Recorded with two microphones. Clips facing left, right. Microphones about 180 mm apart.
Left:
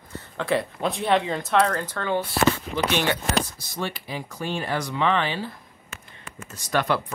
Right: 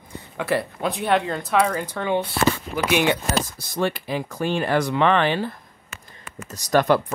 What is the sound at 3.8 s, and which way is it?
Speech, 60° right (ahead or behind).